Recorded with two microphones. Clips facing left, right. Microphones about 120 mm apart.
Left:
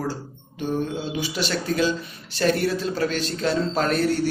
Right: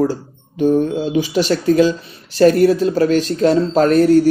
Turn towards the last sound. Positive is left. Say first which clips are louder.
# right 11 dB
turn(degrees=-40)  # may be behind; listen again after turning